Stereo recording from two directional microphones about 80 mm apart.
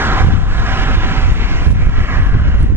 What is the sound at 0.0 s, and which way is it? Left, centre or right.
Vehicle, right.